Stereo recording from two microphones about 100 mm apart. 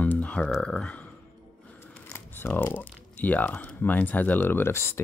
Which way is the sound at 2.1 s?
20° left (ahead or behind).